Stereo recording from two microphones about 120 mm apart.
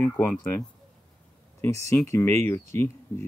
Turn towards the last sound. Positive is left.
turn(degrees=20)  # may be behind; listen again after turning